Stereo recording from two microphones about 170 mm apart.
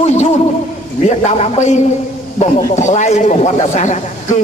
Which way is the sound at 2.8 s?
45° left (ahead or behind).